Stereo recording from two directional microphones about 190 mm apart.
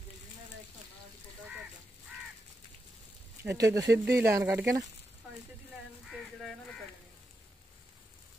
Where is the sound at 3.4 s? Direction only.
15° right (ahead or behind).